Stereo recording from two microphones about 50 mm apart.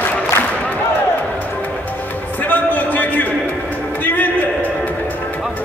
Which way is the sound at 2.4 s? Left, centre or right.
Left.